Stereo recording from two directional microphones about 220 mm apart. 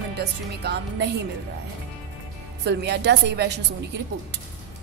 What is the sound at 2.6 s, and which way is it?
A woman's voice, 50° right (ahead or behind).